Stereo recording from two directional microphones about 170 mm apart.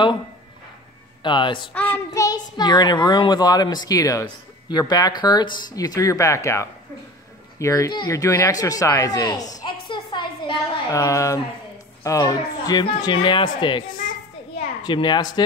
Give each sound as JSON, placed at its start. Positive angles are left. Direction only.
{"t": 1.2, "sound": "a child's voice", "side_deg": 25}
{"t": 9.6, "sound": "a sound", "side_deg": 25}
{"t": 12.0, "sound": "a child's voice", "side_deg": 20}